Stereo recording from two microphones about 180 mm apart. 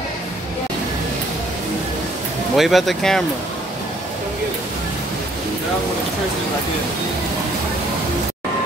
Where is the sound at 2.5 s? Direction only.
Centre (ahead or behind).